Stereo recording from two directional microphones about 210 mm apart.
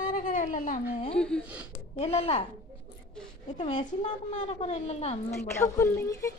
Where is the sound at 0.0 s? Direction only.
40° left (ahead or behind).